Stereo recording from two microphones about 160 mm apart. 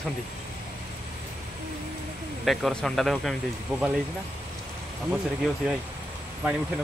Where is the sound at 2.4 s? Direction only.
Centre (ahead or behind).